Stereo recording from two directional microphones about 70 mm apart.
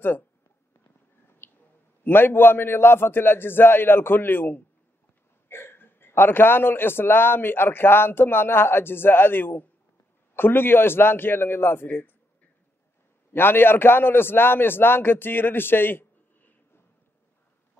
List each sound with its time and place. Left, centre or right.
1.4 s a sound: left
2.0 s a man's voice: left
13.3 s a man's voice: left